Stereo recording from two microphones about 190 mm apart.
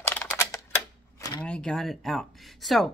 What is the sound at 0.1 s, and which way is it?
Typewriter, 10° left (ahead or behind).